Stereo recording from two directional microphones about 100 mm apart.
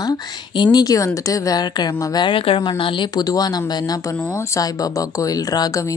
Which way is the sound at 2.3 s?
65° left (ahead or behind).